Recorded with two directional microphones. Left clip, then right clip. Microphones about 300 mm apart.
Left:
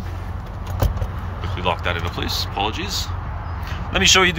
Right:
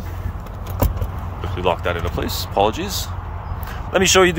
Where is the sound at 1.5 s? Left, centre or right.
Centre.